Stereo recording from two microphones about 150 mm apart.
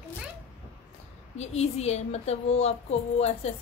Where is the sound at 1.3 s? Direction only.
45° left (ahead or behind).